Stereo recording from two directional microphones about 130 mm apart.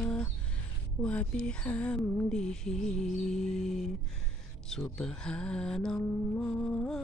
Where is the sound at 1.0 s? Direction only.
10° left (ahead or behind).